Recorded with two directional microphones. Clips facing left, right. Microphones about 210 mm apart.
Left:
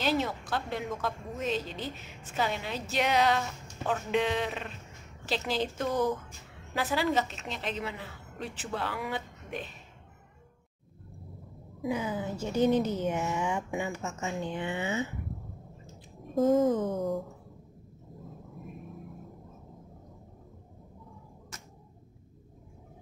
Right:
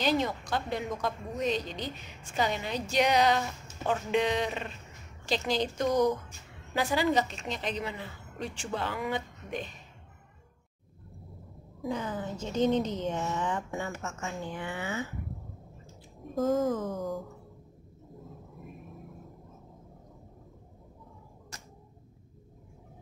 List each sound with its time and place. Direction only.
0.0 s a woman's voice: 5° left (ahead or behind)
11.8 s a woman's voice: 10° left (ahead or behind)
16.3 s a woman's voice: centre (ahead or behind)
16.7 s a sound: 25° left (ahead or behind)